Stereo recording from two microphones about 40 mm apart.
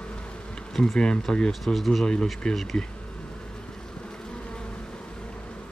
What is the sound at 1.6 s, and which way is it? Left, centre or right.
Speech, centre.